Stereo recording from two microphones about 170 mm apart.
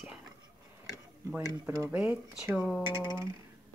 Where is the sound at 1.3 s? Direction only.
15° right (ahead or behind).